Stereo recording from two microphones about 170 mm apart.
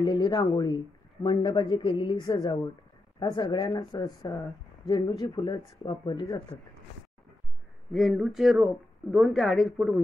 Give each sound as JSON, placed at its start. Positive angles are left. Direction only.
{"t": 0.0, "sound": "speech", "side_deg": 25}
{"t": 2.2, "sound": "speech", "side_deg": 20}
{"t": 7.9, "sound": "speech", "side_deg": 0}